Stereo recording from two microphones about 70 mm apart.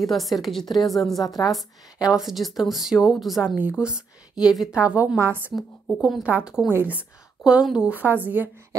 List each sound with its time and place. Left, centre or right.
0.0 s a woman's voice: centre
1.2 s a woman's voice: left
2.1 s a woman's voice: centre
3.4 s a woman's voice: right
5.5 s a woman's voice: centre
6.7 s a woman's voice: right
7.9 s a woman's voice: right